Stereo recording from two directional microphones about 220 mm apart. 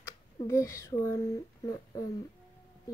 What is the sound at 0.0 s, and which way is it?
Speech, 15° left (ahead or behind).